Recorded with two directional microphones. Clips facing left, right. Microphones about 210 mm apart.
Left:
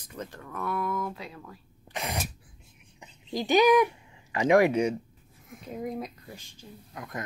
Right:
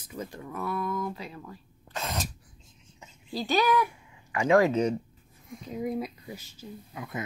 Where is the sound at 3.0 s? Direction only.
15° left (ahead or behind).